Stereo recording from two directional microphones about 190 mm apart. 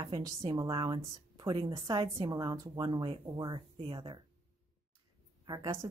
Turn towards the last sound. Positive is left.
turn(degrees=-20)  # may be behind; listen again after turning